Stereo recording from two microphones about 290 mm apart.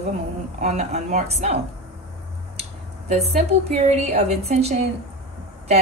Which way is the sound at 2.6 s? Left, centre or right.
Right.